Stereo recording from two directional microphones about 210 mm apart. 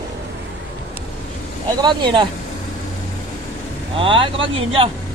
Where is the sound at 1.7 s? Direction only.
20° right (ahead or behind).